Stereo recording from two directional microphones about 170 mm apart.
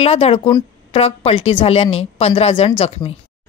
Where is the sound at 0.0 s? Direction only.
35° left (ahead or behind).